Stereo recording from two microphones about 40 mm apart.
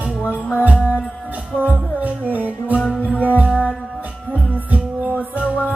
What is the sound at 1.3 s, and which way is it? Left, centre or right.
Music, right.